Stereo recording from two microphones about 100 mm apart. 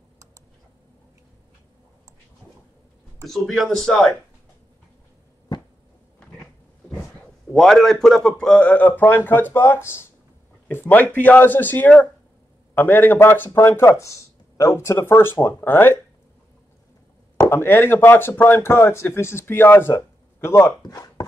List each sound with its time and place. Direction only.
3.3 s speech: 5° left (ahead or behind)
6.1 s a sound: 10° left (ahead or behind)
7.5 s a man's voice: 5° left (ahead or behind); by 16.0 s 20° left (ahead or behind)
17.5 s speech: 25° left (ahead or behind)
20.8 s chopping: 40° left (ahead or behind)